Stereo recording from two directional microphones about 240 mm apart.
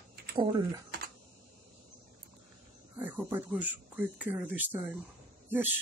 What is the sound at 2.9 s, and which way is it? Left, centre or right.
Speech, centre.